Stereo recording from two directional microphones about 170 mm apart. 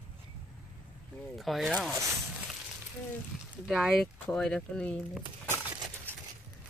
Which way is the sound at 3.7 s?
5° right (ahead or behind).